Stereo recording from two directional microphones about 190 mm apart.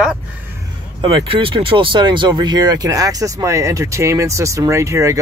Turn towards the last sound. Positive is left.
turn(degrees=-15)  # may be behind; listen again after turning